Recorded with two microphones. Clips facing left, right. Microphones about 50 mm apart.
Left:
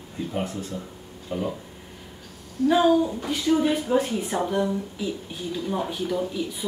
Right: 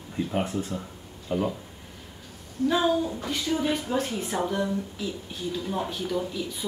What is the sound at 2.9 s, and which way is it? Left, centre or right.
Speech, centre.